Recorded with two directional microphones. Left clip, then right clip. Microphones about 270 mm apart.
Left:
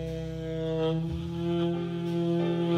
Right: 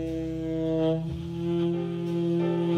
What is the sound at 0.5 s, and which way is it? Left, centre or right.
Music, centre.